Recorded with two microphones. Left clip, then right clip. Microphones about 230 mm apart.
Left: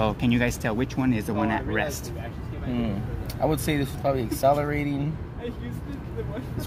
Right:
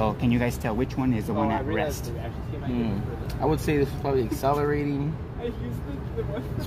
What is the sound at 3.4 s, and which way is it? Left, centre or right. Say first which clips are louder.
Speech: right 1 dB; left.